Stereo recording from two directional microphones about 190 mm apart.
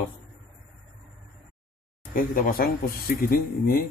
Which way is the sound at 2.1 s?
50° left (ahead or behind).